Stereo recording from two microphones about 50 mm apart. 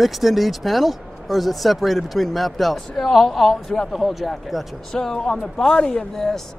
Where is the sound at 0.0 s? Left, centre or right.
Centre.